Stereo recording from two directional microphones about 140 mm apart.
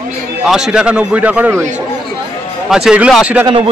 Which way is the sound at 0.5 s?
5° right (ahead or behind).